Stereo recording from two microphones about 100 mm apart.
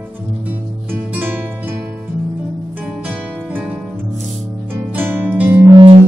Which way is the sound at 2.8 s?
15° right (ahead or behind).